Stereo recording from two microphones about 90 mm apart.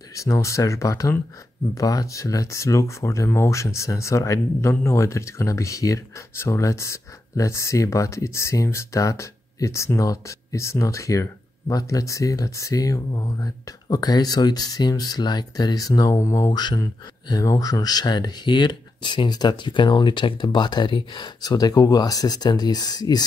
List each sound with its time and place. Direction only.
0.1 s speech: 35° left (ahead or behind)
16.4 s speech: 50° left (ahead or behind)
17.3 s speech: 40° left (ahead or behind)